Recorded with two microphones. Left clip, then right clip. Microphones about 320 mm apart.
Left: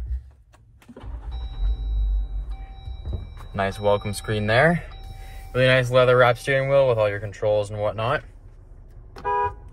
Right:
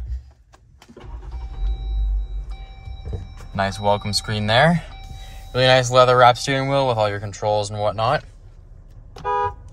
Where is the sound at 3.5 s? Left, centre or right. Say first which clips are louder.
Right 2 dB; centre.